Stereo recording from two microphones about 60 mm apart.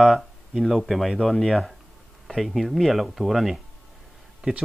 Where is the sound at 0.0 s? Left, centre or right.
Centre.